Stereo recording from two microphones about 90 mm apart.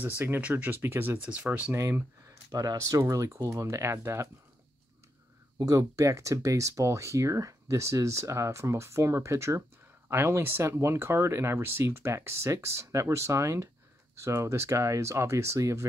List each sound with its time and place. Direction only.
0.2 s speech: 20° right (ahead or behind)
1.2 s speech: 15° right (ahead or behind)
1.7 s speech: 30° right (ahead or behind)
2.5 s speech: 45° right (ahead or behind)
5.7 s speech: 35° right (ahead or behind)